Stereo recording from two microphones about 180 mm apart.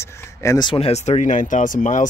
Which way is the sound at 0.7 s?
35° left (ahead or behind).